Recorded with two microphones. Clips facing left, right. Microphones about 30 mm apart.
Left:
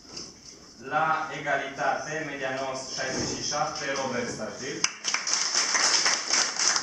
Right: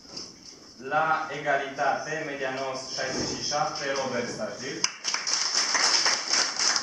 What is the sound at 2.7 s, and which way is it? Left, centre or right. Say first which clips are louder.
A man's voice: even; centre.